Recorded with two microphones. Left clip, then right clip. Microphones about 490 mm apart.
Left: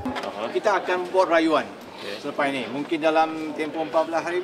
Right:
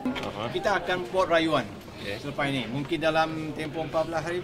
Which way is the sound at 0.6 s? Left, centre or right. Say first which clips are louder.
Left 4 dB; right.